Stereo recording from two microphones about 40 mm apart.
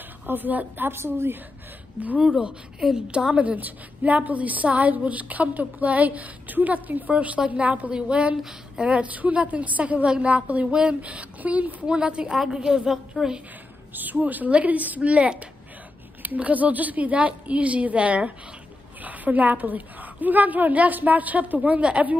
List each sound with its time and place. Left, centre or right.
0.3 s a woman's voice: right
0.8 s a woman's voice: right
2.1 s a woman's voice: centre
3.4 s a woman's voice: right
7.6 s a woman's voice: right
7.9 s a woman's voice: right
10.0 s a woman's voice: right
10.7 s a woman's voice: right
11.0 s a woman's voice: right
12.3 s a woman's voice: centre
13.9 s a woman's voice: right
16.2 s a woman's voice: right
19.0 s a woman's voice: right